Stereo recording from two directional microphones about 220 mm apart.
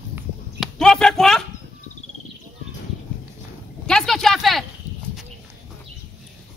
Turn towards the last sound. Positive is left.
turn(degrees=0)  # may be behind; listen again after turning